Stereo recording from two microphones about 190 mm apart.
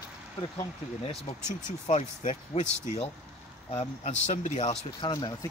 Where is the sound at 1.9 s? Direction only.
35° left (ahead or behind).